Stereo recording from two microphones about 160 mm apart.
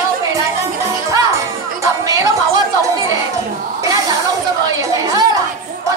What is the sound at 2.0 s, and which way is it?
Music, 20° right (ahead or behind).